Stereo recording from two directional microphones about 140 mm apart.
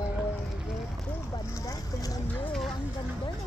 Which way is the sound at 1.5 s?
25° left (ahead or behind).